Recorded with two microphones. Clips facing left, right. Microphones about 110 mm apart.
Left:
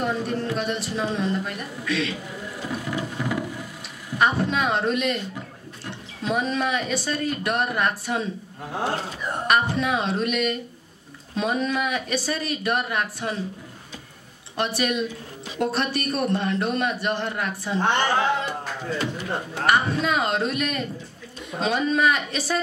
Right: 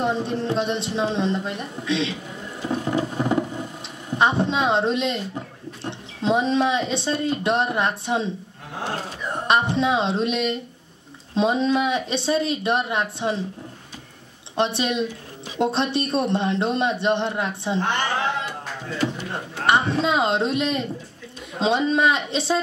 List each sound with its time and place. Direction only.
0.0 s speech: 25° right (ahead or behind)
2.7 s a sound: 30° right (ahead or behind)
4.1 s speech: 25° right (ahead or behind)
9.5 s speech: 25° right (ahead or behind)
14.6 s speech: 25° right (ahead or behind)
19.1 s speech: 25° right (ahead or behind)